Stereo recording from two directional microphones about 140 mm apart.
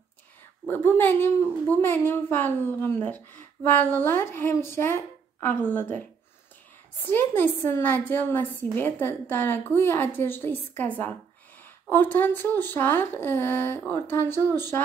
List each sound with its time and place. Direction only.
0.7 s a woman's voice: 15° left (ahead or behind)
11.9 s a woman's voice: 15° left (ahead or behind)